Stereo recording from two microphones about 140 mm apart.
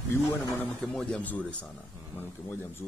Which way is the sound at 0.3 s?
15° left (ahead or behind).